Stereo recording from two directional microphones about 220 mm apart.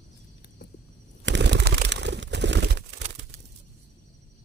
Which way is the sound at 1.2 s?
50° right (ahead or behind).